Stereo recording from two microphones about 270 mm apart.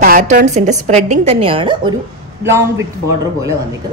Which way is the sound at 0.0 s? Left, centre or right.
Right.